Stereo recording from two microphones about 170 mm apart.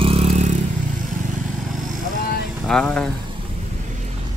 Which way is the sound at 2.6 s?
5° left (ahead or behind).